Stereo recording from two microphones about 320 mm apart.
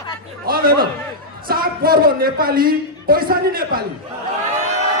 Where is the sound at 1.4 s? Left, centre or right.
Right.